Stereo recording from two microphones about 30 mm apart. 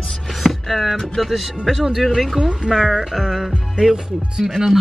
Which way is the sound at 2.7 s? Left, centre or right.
Centre.